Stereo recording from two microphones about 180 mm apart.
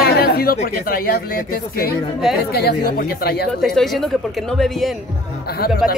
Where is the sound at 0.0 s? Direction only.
60° left (ahead or behind).